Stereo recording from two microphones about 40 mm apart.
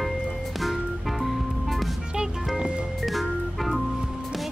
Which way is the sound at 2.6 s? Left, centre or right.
Right.